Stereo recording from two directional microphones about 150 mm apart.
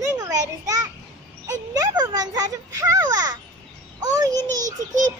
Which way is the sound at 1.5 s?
25° right (ahead or behind).